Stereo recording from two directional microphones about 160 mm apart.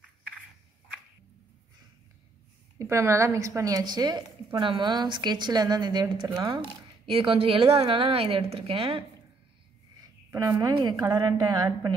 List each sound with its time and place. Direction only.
2.8 s a woman's voice: 15° right (ahead or behind)
6.5 s a woman's voice: 35° right (ahead or behind)
10.3 s a woman's voice: 25° right (ahead or behind)